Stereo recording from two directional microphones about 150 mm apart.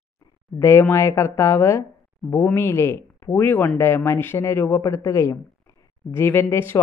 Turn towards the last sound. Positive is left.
turn(degrees=15)  # may be behind; listen again after turning